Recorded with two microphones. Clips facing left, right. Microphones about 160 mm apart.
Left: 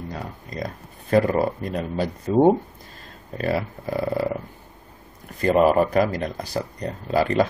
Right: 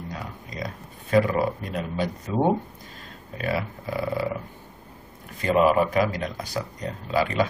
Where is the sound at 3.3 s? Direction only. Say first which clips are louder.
Left 3 dB; 40° left (ahead or behind).